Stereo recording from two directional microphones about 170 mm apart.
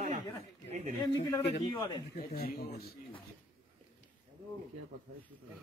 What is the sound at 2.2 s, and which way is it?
Speech, 55° left (ahead or behind).